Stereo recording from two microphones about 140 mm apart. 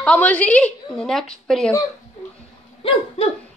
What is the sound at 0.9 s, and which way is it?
Speech, 5° left (ahead or behind).